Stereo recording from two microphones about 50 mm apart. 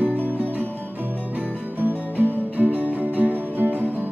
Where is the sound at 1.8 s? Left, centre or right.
Right.